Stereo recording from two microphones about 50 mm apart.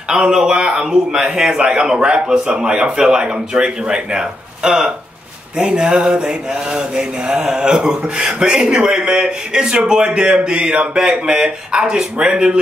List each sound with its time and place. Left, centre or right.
0.1 s mantra: centre
2.0 s a man's voice: right
2.3 s mantra: right